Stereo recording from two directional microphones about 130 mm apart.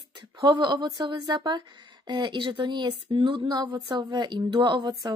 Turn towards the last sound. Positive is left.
turn(degrees=-35)  # may be behind; listen again after turning